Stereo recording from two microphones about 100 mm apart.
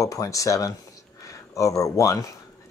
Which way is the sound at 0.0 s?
35° left (ahead or behind).